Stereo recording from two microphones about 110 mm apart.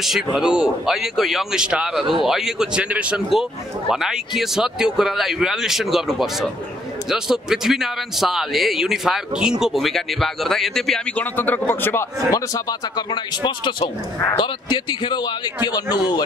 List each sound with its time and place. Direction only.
0.3 s a man's voice: 5° right (ahead or behind)
11.1 s a man's voice: 15° left (ahead or behind); by 16.2 s 40° left (ahead or behind)